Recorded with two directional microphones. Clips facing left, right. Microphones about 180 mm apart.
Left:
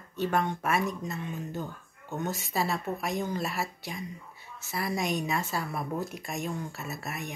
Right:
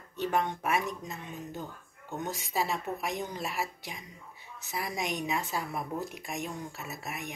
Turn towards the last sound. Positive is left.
turn(degrees=-15)  # may be behind; listen again after turning